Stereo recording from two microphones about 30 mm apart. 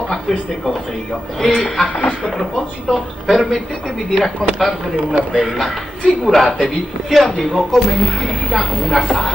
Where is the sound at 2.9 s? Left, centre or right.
Centre.